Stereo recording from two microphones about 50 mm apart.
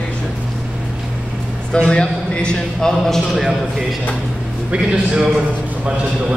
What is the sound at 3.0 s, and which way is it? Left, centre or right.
Speech, centre.